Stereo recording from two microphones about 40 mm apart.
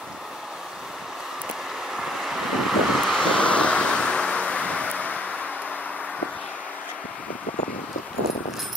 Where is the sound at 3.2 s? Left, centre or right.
Left.